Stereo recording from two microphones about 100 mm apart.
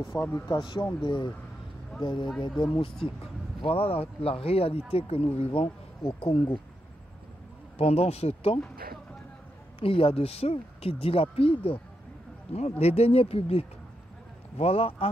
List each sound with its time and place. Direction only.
0.1 s speech: 15° left (ahead or behind)
0.5 s speech: 50° left (ahead or behind)
3.6 s speech: 75° left (ahead or behind); by 6.4 s 60° left (ahead or behind)
7.7 s speech: 85° left
9.8 s speech: 70° left (ahead or behind)
12.5 s speech: 90° left; by 15.0 s 75° left (ahead or behind)